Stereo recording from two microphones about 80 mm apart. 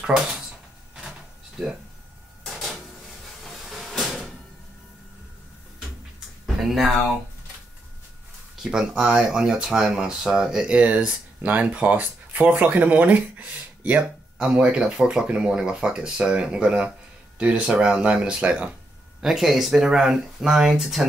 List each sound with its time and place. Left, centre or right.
0.0 s speech: centre
2.4 s a sound: centre
3.4 s vehicle: centre
6.4 s a sound: centre
8.6 s speech: centre
19.2 s speech: centre